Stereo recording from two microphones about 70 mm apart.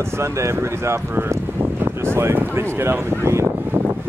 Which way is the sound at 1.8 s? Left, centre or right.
Right.